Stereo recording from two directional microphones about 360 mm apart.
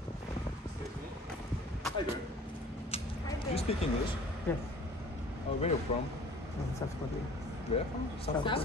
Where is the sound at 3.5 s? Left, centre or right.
Centre.